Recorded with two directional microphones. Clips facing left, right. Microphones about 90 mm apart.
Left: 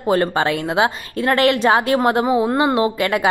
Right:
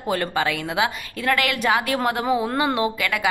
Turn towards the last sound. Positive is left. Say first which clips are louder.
# left 5 dB
turn(degrees=30)  # may be behind; listen again after turning